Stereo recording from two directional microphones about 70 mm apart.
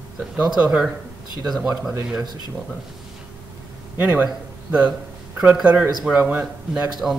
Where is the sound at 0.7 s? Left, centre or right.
Centre.